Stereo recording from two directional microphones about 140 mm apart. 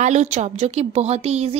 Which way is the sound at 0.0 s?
55° right (ahead or behind).